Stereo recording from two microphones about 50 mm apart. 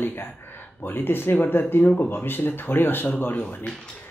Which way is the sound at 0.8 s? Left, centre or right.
Left.